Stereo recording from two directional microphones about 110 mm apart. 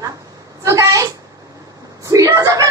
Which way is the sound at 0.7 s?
30° right (ahead or behind).